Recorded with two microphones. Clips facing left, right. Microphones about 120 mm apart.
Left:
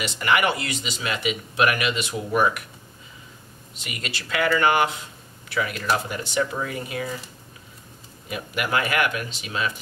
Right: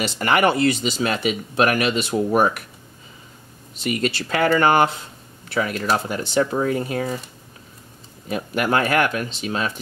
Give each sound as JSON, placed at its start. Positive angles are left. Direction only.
{"t": 0.0, "sound": "speech", "side_deg": -40}
{"t": 3.8, "sound": "speech", "side_deg": -35}
{"t": 8.3, "sound": "speech", "side_deg": -35}